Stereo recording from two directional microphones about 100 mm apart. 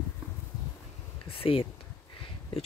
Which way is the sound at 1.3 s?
65° left (ahead or behind).